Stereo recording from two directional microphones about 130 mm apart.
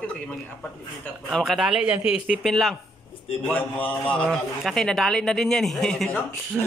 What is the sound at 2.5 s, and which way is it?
Speech, centre (ahead or behind).